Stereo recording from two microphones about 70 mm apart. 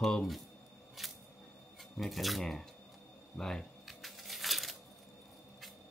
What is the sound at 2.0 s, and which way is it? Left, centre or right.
Speech, centre.